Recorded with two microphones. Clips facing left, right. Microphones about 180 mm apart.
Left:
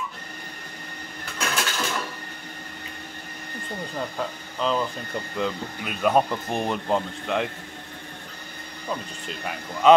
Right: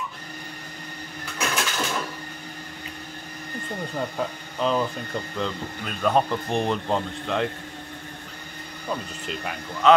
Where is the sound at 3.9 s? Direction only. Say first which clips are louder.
Right 2 dB; 5° right (ahead or behind).